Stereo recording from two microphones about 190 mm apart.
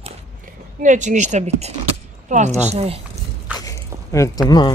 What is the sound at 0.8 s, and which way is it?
Speech, 40° right (ahead or behind).